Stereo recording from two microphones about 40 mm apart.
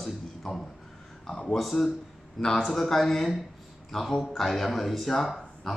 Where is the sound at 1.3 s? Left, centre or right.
Centre.